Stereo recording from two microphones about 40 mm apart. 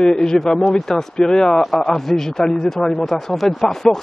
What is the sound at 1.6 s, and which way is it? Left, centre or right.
Speech, centre.